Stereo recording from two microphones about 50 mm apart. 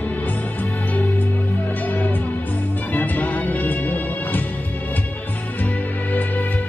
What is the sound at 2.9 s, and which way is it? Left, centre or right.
Music, left.